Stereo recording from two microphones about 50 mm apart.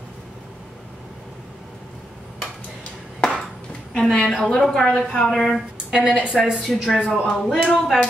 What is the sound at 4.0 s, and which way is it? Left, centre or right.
A woman's voice, centre.